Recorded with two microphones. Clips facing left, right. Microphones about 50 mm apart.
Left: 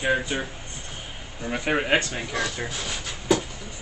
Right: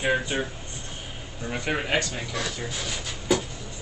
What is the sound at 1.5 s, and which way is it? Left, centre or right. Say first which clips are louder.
Speech: left 4 dB; centre.